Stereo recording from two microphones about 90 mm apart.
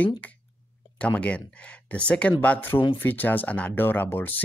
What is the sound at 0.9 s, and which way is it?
Speech, 15° left (ahead or behind).